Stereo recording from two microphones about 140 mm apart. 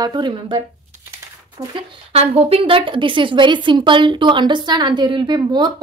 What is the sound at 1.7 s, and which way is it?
A woman's voice, 45° right (ahead or behind).